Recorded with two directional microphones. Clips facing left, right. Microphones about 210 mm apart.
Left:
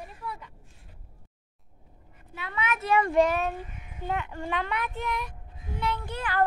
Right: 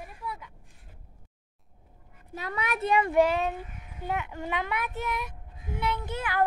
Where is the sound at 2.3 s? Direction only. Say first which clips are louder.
Even; 40° right (ahead or behind).